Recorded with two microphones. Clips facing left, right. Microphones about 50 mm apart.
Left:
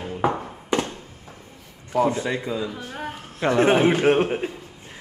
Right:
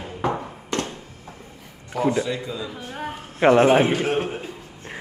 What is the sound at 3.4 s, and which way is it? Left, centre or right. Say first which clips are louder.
Speech: right 5 dB; right.